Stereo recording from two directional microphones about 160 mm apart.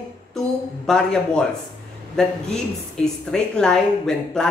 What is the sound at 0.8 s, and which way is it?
A woman's voice, 5° left (ahead or behind).